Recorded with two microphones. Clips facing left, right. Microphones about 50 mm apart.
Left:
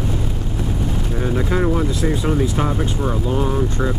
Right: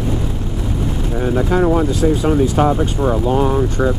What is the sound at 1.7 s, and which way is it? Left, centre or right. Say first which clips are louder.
Speech: right 5 dB; centre.